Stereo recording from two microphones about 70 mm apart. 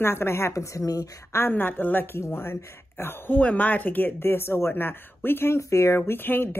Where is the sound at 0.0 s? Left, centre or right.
Left.